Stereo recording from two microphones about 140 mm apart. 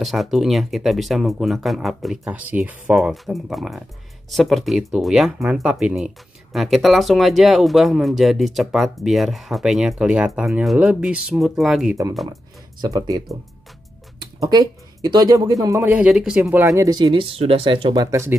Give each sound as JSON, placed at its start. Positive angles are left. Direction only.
{"t": 0.0, "sound": "speech", "side_deg": 0}
{"t": 12.8, "sound": "speech", "side_deg": -25}
{"t": 15.9, "sound": "speech", "side_deg": -5}
{"t": 16.6, "sound": "speech", "side_deg": -25}